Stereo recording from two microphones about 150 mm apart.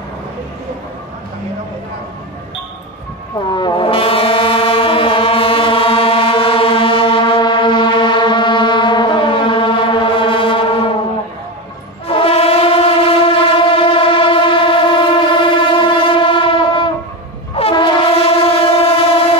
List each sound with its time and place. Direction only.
3.5 s foghorn: 35° left (ahead or behind)
12.1 s train: 40° left (ahead or behind)